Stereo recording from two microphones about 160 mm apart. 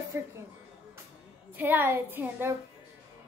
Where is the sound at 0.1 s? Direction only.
15° right (ahead or behind).